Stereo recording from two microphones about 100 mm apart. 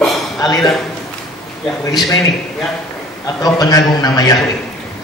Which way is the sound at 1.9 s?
40° left (ahead or behind).